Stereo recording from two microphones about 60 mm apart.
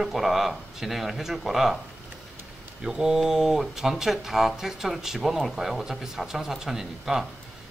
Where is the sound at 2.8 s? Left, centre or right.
Centre.